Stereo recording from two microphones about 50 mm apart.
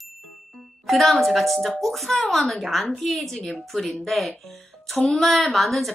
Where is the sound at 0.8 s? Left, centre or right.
Centre.